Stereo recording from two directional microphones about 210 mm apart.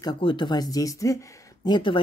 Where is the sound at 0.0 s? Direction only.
25° left (ahead or behind).